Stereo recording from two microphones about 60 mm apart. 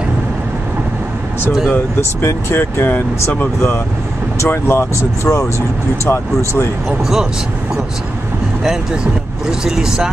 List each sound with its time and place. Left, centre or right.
1.7 s speech: left
4.5 s speech: left
9.5 s speech: centre